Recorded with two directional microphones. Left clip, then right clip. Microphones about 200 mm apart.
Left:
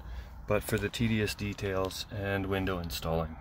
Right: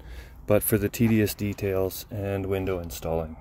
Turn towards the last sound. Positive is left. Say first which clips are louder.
# right 4 dB
turn(degrees=-35)  # may be behind; listen again after turning